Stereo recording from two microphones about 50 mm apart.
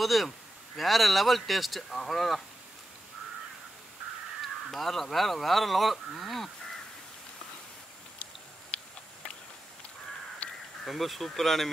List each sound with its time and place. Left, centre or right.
0.0 s speech: centre
4.4 s speech: centre
10.4 s crow: left
10.9 s speech: centre